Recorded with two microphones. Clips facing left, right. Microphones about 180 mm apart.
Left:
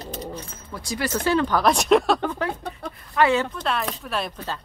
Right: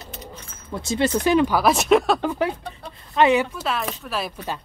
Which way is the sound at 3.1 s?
20° right (ahead or behind).